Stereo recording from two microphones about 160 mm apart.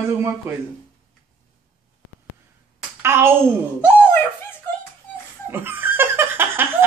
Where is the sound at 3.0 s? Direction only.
15° right (ahead or behind).